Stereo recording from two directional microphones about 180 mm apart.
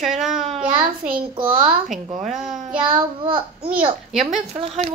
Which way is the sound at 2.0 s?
40° right (ahead or behind).